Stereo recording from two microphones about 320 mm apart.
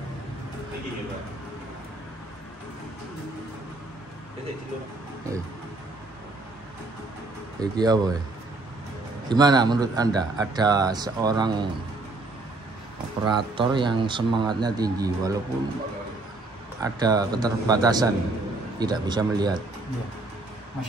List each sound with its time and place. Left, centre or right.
7.6 s speech: centre
9.3 s speech: centre
13.2 s speech: centre
16.8 s speech: centre